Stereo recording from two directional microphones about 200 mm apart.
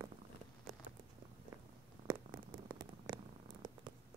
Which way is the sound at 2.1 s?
15° right (ahead or behind).